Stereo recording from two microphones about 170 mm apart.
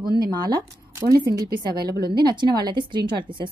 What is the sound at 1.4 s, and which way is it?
Speech, 65° right (ahead or behind).